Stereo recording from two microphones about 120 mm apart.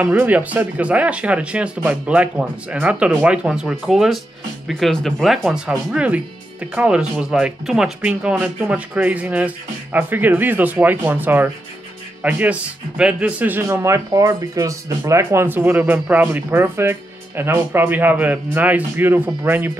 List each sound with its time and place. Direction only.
0.0 s speech: 15° right (ahead or behind)